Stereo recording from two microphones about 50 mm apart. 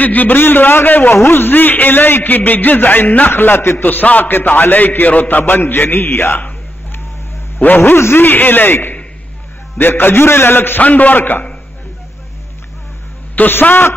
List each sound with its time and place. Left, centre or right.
0.0 s a man's voice: left
1.1 s a man's voice: left
3.3 s a man's voice: left
7.6 s a man's voice: left
10.8 s a man's voice: left
13.4 s a man's voice: left